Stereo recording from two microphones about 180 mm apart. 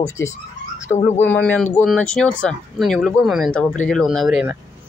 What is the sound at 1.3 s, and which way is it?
Speech, 10° left (ahead or behind).